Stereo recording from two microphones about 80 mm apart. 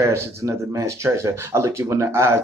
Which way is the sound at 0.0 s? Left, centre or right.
Right.